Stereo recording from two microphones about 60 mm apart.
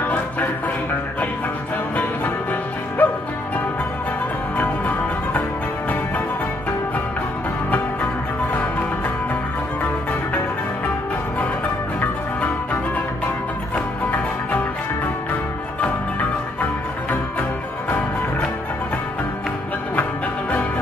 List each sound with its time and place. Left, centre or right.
0.0 s music: left
3.0 s music: left
4.6 s music: left
13.7 s music: left